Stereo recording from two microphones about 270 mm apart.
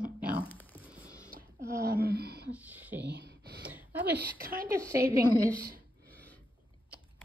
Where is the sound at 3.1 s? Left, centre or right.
Right.